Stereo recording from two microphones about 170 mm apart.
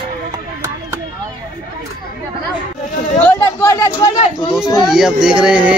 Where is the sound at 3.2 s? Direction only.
10° left (ahead or behind).